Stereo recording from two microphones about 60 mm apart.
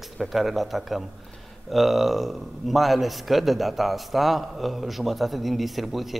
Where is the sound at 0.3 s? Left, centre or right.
Centre.